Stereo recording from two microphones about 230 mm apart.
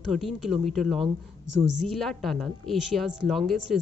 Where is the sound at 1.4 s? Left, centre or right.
Right.